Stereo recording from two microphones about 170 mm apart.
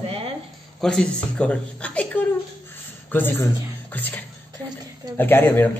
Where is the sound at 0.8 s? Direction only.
5° left (ahead or behind).